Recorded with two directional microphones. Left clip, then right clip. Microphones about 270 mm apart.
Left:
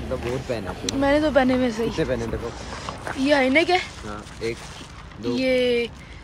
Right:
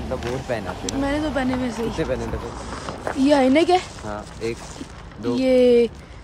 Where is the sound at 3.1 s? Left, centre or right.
Centre.